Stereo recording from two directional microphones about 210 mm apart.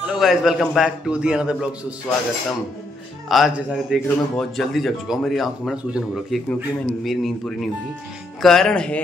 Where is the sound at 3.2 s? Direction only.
Centre (ahead or behind).